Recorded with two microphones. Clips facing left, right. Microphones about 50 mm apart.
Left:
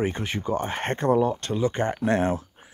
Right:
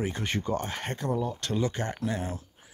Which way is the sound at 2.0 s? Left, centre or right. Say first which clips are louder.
Left 9 dB; left.